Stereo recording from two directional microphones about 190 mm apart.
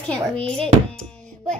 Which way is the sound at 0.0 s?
5° left (ahead or behind).